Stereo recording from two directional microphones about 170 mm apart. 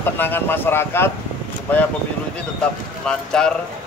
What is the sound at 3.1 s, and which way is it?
Speech, 5° left (ahead or behind).